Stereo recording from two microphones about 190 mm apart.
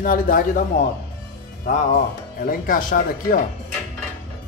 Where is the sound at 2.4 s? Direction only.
45° left (ahead or behind).